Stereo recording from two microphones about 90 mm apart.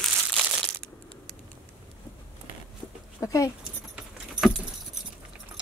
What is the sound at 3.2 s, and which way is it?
Speech, 35° left (ahead or behind).